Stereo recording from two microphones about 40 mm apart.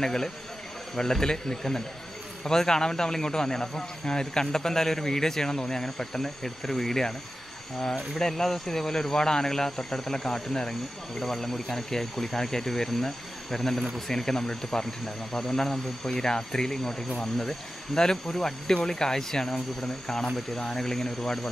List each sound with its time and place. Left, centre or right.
0.0 s a man's voice: centre
8.2 s a man's voice: centre
10.7 s a man's voice: centre